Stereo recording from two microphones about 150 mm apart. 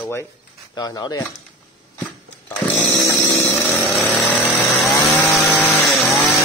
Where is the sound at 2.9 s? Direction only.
15° left (ahead or behind); by 5.4 s centre (ahead or behind).